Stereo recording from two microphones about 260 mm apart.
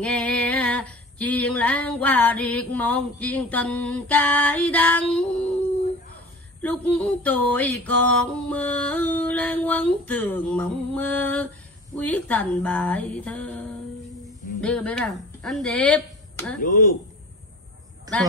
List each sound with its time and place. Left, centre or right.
0.0 s female singing: centre
6.6 s a sound: centre
12.1 s female singing: centre
14.6 s speech: centre
16.6 s speech: left
18.1 s a man's voice: centre